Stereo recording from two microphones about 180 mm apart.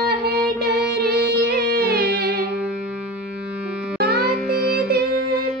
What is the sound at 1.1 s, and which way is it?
Music, 60° right (ahead or behind).